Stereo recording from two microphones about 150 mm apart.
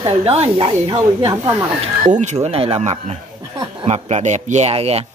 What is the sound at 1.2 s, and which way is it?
Speech, 20° right (ahead or behind).